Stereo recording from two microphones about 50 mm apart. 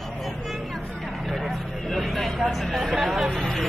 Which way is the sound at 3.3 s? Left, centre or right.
Centre.